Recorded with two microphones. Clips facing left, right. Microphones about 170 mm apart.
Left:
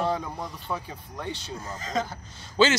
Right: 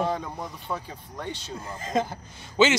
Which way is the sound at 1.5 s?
10° right (ahead or behind).